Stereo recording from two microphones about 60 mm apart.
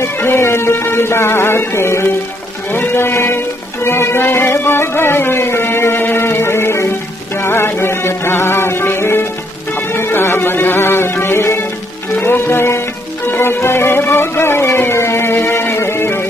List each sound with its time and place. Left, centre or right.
0.0 s music: left
2.7 s a sound: left
9.8 s music: left